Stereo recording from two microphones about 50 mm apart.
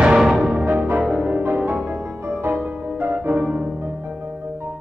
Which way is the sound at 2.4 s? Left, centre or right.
Right.